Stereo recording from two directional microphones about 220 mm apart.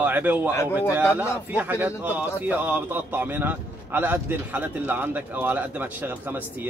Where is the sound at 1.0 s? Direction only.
10° left (ahead or behind).